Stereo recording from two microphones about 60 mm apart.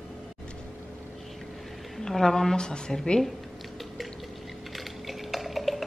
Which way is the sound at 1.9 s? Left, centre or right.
Centre.